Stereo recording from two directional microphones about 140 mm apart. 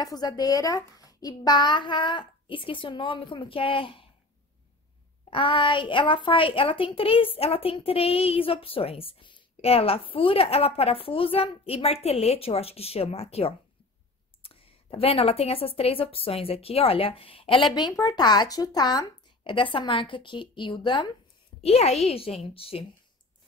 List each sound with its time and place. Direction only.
0.0 s a child's voice: 30° left (ahead or behind)
5.3 s a woman's voice: 35° left (ahead or behind)
17.7 s a child's voice: 25° left (ahead or behind)
21.5 s a woman's voice: 45° left (ahead or behind)